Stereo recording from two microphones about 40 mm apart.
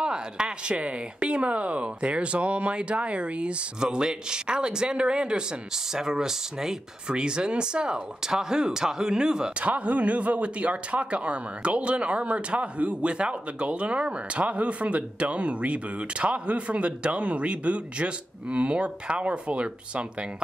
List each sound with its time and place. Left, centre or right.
0.0 s speech: right
9.6 s speech: right